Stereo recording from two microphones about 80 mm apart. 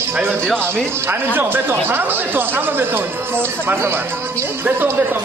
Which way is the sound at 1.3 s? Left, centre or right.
Right.